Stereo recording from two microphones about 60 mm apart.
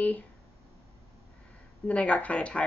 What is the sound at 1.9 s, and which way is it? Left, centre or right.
Speech, left.